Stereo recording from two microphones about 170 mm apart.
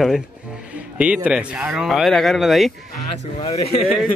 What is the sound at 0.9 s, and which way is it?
Speech, 5° right (ahead or behind).